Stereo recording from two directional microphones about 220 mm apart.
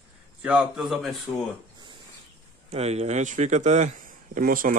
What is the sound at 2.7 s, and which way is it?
A man's voice, 30° right (ahead or behind).